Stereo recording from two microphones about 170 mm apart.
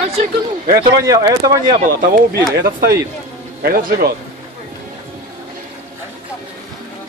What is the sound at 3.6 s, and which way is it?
Speech, 65° right (ahead or behind).